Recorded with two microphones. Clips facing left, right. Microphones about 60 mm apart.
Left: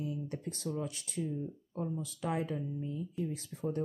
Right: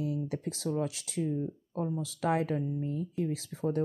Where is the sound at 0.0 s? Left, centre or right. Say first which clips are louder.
Right 5 dB; right.